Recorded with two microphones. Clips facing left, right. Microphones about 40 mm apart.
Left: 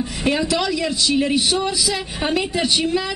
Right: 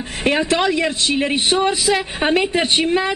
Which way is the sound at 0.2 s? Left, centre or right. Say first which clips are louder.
Right 3 dB; right.